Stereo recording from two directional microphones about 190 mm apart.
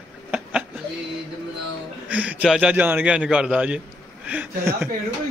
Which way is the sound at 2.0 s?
5° right (ahead or behind).